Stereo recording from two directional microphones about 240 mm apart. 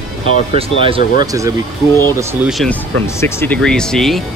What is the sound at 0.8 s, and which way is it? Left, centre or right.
Speech, right.